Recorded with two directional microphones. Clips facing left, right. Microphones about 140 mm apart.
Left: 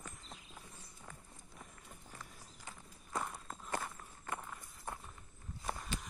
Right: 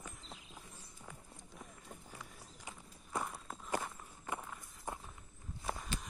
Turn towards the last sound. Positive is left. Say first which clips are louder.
# even
turn(degrees=0)  # may be behind; listen again after turning